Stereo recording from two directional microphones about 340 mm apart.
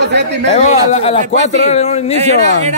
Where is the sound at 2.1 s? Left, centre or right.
Centre.